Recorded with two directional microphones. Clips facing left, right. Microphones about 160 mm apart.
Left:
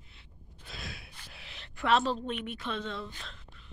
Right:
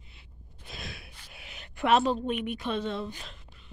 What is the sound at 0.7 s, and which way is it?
Gasp, 20° right (ahead or behind).